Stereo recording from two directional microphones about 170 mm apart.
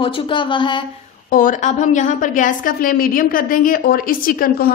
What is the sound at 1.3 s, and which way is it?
A woman's voice, 55° left (ahead or behind).